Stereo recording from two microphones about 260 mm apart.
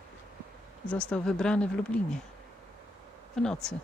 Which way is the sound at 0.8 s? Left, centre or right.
Centre.